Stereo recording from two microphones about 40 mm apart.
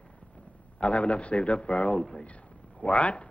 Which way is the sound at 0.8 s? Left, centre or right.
Left.